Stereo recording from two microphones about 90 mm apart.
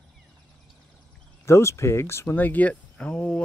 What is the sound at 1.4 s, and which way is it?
Speech, 30° left (ahead or behind).